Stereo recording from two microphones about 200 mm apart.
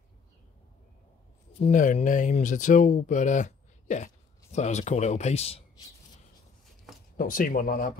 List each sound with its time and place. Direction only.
1.6 s speech: 40° left (ahead or behind)
7.2 s speech: 45° left (ahead or behind)